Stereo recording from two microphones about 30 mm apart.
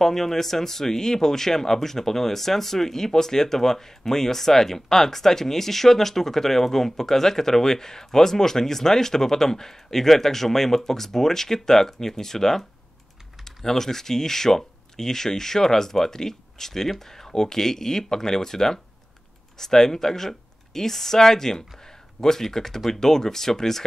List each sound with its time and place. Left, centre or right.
0.0 s speech: centre
13.7 s speech: centre